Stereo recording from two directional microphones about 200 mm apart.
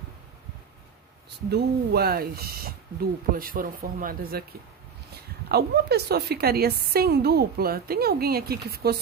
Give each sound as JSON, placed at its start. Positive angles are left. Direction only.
{"t": 1.5, "sound": "a woman's voice", "side_deg": -55}
{"t": 5.5, "sound": "a woman's voice", "side_deg": -55}